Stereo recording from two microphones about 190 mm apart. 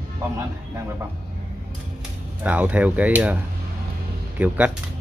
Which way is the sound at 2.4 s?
5° right (ahead or behind).